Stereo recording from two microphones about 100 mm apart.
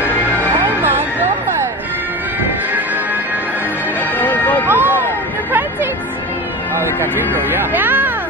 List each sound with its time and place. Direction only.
4.2 s music: 15° left (ahead or behind)
4.6 s music: 20° right (ahead or behind)
7.0 s speech: 20° right (ahead or behind)